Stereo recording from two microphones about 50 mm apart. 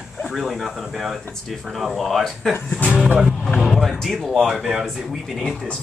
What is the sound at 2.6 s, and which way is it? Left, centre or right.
Speech, left.